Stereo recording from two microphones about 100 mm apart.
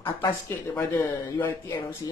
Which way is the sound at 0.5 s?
25° left (ahead or behind).